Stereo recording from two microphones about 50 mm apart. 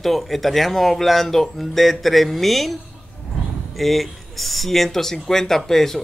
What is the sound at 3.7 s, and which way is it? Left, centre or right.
Speech, centre.